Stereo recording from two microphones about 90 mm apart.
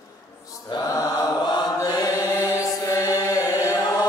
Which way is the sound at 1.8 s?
45° left (ahead or behind).